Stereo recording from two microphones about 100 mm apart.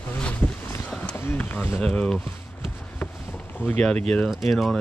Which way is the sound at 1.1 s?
20° left (ahead or behind).